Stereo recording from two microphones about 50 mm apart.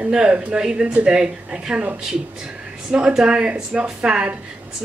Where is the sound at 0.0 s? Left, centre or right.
Right.